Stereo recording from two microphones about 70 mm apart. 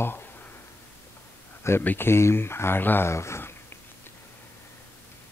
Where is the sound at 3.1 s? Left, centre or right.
Left.